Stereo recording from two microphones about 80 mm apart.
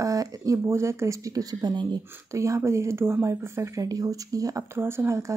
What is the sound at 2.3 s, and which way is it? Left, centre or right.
Speech, right.